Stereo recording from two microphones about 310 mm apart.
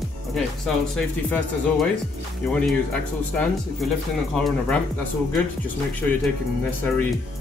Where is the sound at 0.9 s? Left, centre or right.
Centre.